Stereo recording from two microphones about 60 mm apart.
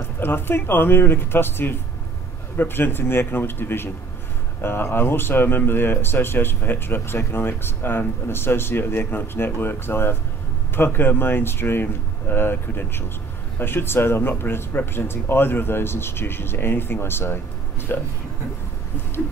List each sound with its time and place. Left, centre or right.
0.2 s speech: left